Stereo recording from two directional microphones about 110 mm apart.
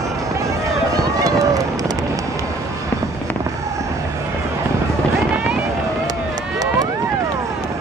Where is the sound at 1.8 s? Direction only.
30° right (ahead or behind).